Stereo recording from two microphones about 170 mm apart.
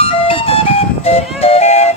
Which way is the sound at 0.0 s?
35° left (ahead or behind).